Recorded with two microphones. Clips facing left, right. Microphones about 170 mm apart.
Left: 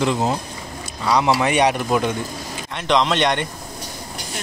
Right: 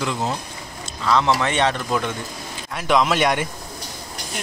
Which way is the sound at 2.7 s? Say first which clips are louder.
Even; 5° right (ahead or behind).